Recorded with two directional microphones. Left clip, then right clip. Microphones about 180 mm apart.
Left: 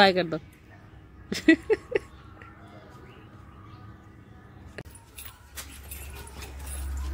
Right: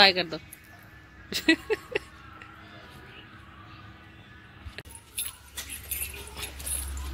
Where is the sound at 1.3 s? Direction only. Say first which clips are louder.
Left 3 dB; 55° left (ahead or behind).